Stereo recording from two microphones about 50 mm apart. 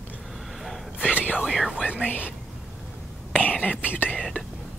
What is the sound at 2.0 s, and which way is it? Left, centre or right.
Speech, left.